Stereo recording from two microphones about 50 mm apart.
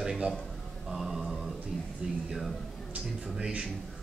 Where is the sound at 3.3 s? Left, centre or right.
Centre.